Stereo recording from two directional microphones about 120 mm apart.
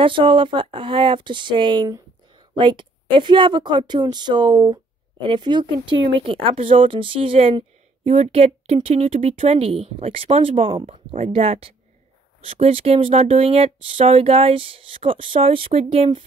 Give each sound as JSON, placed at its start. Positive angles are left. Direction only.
{"t": 0.0, "sound": "speech", "side_deg": -45}